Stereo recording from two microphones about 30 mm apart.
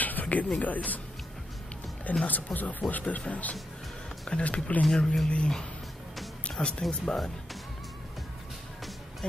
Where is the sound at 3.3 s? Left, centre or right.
Left.